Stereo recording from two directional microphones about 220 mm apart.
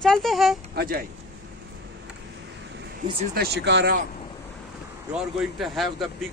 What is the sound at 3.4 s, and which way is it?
Speech, 50° right (ahead or behind).